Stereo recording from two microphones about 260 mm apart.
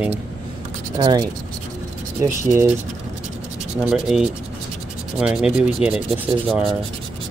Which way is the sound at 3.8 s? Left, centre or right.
Centre.